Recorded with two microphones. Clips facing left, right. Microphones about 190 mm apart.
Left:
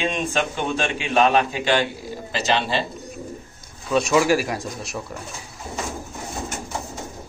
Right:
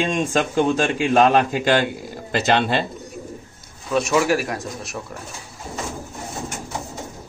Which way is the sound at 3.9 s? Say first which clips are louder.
Left 1 dB; centre (ahead or behind).